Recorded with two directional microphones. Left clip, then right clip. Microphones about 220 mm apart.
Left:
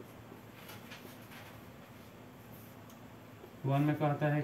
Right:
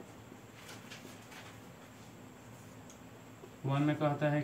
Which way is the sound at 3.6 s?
15° left (ahead or behind).